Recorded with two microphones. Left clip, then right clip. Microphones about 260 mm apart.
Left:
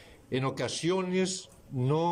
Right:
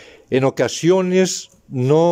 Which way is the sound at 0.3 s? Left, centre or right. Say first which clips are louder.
Right 15 dB; right.